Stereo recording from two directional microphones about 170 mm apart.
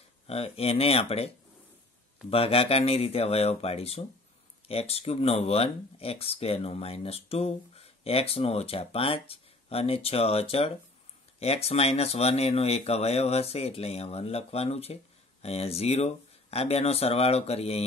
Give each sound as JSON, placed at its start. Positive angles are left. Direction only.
{"t": 0.3, "sound": "speech", "side_deg": 35}